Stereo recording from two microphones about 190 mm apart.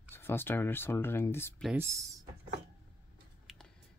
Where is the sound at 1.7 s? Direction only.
15° right (ahead or behind).